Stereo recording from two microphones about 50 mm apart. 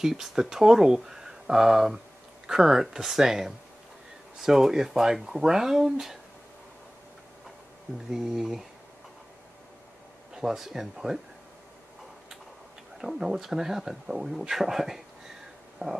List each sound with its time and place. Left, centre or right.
0.0 s speech: centre
8.1 s speech: centre
10.3 s speech: centre
13.0 s speech: centre
15.8 s a sound: right